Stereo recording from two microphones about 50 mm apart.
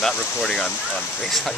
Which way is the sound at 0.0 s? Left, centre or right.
Centre.